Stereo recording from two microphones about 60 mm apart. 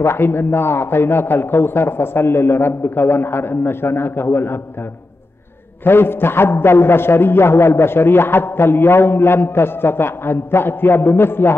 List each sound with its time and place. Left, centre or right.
0.0 s a man's voice: left
5.9 s a man's voice: left